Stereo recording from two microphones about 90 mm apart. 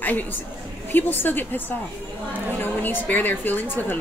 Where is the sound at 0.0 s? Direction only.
20° left (ahead or behind).